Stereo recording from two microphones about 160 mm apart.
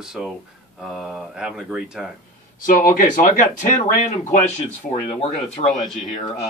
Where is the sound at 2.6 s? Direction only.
60° left (ahead or behind).